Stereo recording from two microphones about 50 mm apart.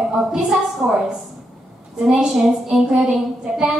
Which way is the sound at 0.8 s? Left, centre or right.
Right.